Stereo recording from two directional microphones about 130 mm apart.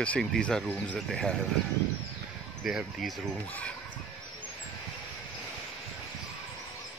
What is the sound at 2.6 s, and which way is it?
Speech, centre (ahead or behind).